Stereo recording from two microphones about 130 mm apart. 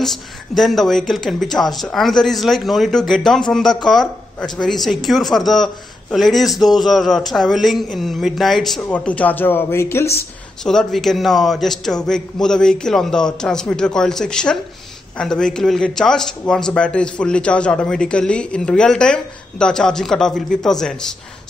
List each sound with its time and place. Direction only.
0.6 s speech: centre (ahead or behind); by 10.0 s 20° left (ahead or behind)
10.6 s speech: 5° left (ahead or behind)